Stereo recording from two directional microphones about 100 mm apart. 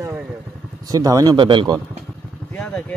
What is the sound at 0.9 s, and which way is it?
Speech, 35° right (ahead or behind).